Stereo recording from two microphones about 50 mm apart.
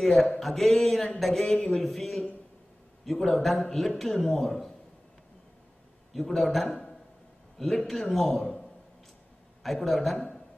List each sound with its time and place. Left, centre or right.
0.0 s a man's voice: centre
1.5 s speech: left
1.8 s a man's voice: centre
6.1 s a man's voice: centre
9.6 s a man's voice: centre